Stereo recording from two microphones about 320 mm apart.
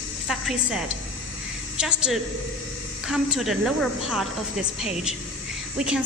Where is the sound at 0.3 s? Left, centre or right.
Centre.